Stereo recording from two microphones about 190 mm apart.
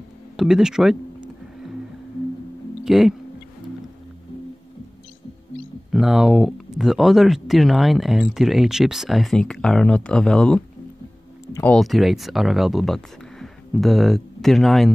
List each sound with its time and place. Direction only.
0.4 s speech: 5° right (ahead or behind)
2.8 s speech: centre (ahead or behind)
5.9 s speech: centre (ahead or behind)
11.4 s a sound: 15° left (ahead or behind)
11.7 s speech: centre (ahead or behind)